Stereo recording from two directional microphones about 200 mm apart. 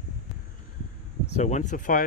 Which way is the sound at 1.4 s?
35° left (ahead or behind).